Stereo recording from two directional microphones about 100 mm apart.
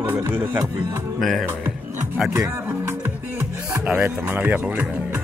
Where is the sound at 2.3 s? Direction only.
30° right (ahead or behind); by 4.1 s 15° right (ahead or behind).